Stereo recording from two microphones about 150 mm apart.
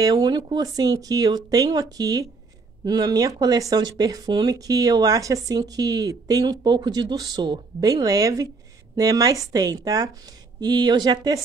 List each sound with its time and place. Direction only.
0.0 s speech: 25° right (ahead or behind)